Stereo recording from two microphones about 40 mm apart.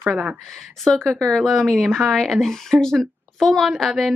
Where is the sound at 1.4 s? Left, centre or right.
Centre.